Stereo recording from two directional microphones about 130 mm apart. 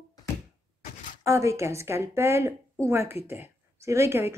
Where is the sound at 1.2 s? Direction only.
20° right (ahead or behind).